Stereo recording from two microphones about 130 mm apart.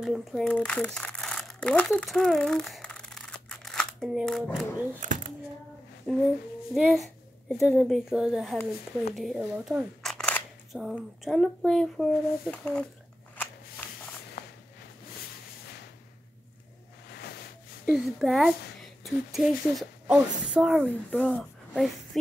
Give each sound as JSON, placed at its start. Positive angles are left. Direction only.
{"t": 0.0, "sound": "speech", "side_deg": 0}
{"t": 5.0, "sound": "a sound", "side_deg": -80}
{"t": 6.1, "sound": "speech", "side_deg": 0}
{"t": 6.7, "sound": "a sound", "side_deg": -5}
{"t": 7.7, "sound": "speech", "side_deg": 0}
{"t": 9.1, "sound": "camera", "side_deg": 0}
{"t": 10.8, "sound": "speech", "side_deg": 0}
{"t": 17.8, "sound": "speech", "side_deg": 0}